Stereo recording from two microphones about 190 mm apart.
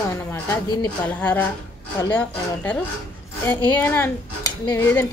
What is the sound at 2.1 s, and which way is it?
Speech, 10° left (ahead or behind).